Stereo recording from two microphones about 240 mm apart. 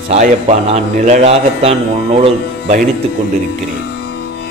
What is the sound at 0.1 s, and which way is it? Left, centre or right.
A man's voice, right.